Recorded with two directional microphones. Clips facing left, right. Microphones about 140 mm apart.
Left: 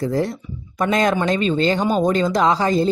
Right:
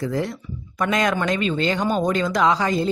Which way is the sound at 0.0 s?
35° left (ahead or behind).